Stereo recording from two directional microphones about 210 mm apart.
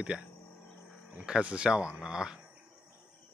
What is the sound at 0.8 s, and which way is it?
Speech, 5° right (ahead or behind).